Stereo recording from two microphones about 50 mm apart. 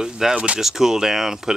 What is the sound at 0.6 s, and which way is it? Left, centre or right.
Speech, centre.